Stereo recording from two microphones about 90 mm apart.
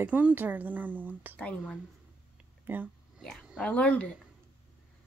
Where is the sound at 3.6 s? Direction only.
15° left (ahead or behind).